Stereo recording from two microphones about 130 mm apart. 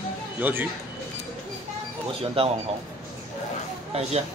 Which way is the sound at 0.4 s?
15° right (ahead or behind).